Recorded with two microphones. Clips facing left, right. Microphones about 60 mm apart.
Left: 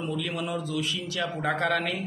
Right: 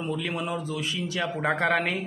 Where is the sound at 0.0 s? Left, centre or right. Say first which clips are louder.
Right 1 dB; right.